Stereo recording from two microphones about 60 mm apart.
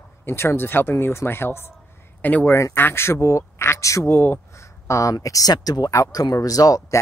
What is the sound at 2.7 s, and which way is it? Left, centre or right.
A man's voice, left.